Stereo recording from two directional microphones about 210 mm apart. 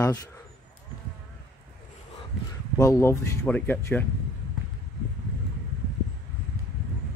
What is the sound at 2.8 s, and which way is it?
Speech, 15° left (ahead or behind).